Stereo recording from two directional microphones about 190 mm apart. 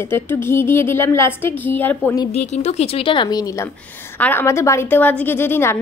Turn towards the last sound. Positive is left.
turn(degrees=10)  # may be behind; listen again after turning